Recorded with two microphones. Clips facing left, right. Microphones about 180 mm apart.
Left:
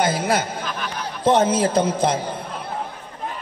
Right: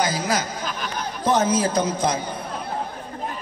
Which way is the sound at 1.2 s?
25° left (ahead or behind).